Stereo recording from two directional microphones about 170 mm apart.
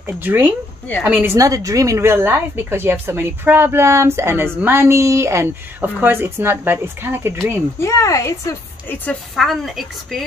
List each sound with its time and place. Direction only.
0.0 s a woman's voice: 10° right (ahead or behind)
7.8 s a woman's voice: 20° left (ahead or behind)
9.3 s a woman's voice: centre (ahead or behind)